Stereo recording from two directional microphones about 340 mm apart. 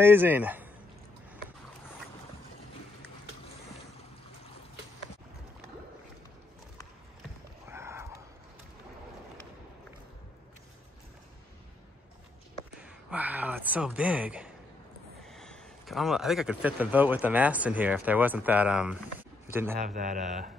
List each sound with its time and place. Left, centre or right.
0.0 s speech: centre
7.6 s a sound: centre
12.8 s speech: centre
19.8 s speech: right